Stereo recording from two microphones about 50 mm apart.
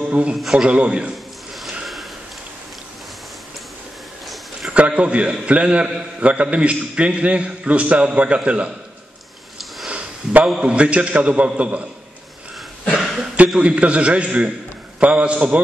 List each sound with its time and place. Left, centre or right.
0.0 s a man's voice: centre
4.6 s a man's voice: right
9.8 s a sound: right
10.6 s a man's voice: right
12.9 s a sound: centre
13.6 s a man's voice: right